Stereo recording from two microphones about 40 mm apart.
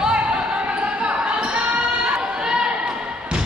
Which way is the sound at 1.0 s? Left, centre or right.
Right.